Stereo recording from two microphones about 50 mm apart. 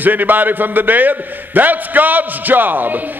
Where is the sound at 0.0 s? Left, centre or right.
Right.